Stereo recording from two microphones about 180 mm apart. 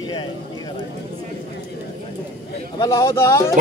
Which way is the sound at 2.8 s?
15° left (ahead or behind).